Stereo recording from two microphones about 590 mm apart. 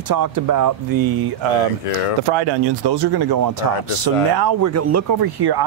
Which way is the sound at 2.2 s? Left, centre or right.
Right.